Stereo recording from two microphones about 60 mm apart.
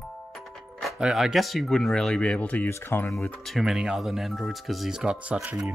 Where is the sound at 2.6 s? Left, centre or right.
Left.